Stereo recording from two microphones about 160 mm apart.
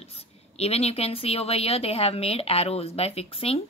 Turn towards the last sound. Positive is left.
turn(degrees=35)  # may be behind; listen again after turning